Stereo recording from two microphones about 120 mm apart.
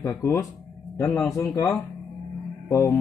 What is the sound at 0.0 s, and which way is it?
Speech, 25° left (ahead or behind).